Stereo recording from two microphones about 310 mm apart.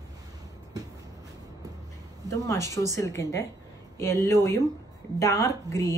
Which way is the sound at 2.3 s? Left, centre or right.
Centre.